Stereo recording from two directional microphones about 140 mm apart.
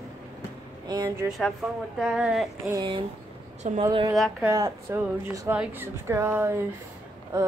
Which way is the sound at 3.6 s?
65° right (ahead or behind).